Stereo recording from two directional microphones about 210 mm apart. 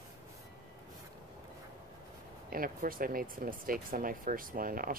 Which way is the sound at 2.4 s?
45° right (ahead or behind).